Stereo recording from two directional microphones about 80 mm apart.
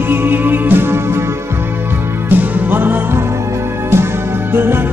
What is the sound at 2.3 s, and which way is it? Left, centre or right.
Music, right.